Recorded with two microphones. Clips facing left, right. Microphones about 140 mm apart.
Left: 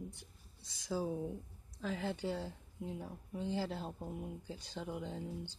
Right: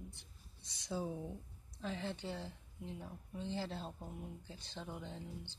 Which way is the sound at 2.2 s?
10° left (ahead or behind).